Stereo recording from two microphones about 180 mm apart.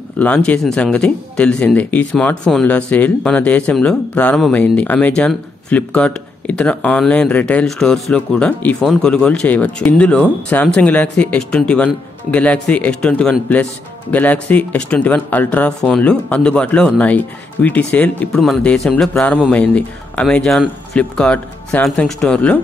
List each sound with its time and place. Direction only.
0.2 s speech: 5° left (ahead or behind)